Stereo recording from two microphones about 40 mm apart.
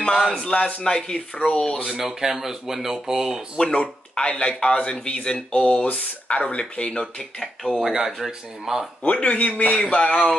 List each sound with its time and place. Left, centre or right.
0.4 s speech: left
1.9 s speech: centre
3.6 s speech: left
5.8 s speech: left
6.3 s speech: left
7.3 s speech: centre
7.8 s speech: centre
9.0 s speech: left
9.8 s speech: left
10.0 s speech: left